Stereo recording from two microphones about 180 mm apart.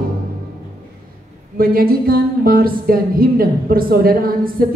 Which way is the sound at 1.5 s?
55° right (ahead or behind).